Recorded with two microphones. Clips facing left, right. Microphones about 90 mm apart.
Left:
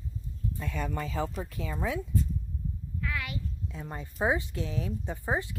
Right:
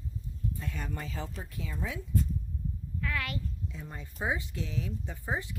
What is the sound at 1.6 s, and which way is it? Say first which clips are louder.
Speech: left 5 dB; 60° left (ahead or behind).